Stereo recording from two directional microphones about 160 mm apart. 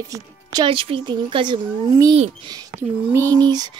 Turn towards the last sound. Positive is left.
turn(degrees=-25)  # may be behind; listen again after turning